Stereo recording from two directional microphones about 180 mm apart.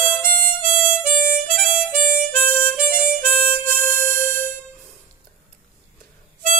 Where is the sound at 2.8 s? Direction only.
55° right (ahead or behind).